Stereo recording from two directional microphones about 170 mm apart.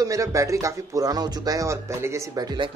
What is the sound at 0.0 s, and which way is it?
Speech, 20° right (ahead or behind).